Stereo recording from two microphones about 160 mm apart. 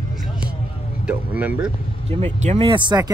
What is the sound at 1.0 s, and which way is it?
Speech, 10° right (ahead or behind).